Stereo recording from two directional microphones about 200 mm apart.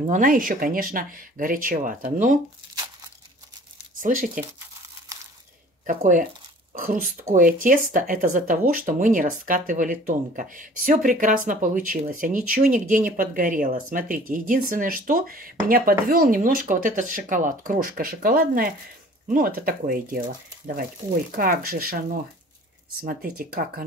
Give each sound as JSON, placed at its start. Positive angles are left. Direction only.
{"t": 0.0, "sound": "speech", "side_deg": -40}
{"t": 4.0, "sound": "speech", "side_deg": -40}
{"t": 5.1, "sound": "a sound", "side_deg": -15}
{"t": 5.9, "sound": "speech", "side_deg": -40}
{"t": 21.4, "sound": "speech", "side_deg": -45}